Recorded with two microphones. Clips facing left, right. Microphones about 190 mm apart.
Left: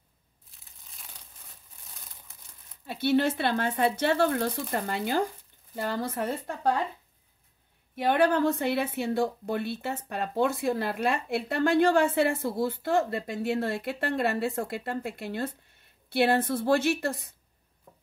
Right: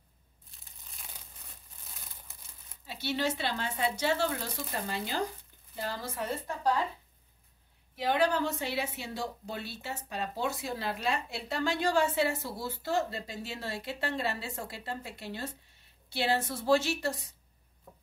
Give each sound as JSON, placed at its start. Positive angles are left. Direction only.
{"t": 2.9, "sound": "speech", "side_deg": 55}
{"t": 7.9, "sound": "speech", "side_deg": 55}